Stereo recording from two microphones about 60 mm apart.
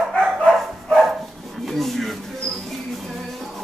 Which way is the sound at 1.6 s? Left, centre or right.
Centre.